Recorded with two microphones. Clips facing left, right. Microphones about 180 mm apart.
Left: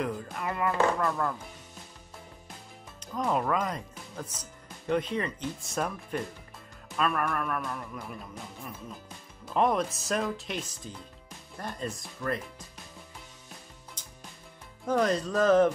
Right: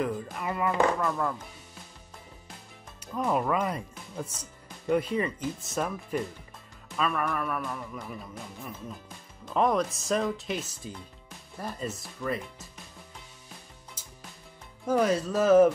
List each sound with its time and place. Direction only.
0.0 s speech: centre (ahead or behind)
3.1 s speech: centre (ahead or behind)
9.5 s speech: centre (ahead or behind)
14.0 s music: 5° right (ahead or behind)
14.9 s speech: 5° right (ahead or behind)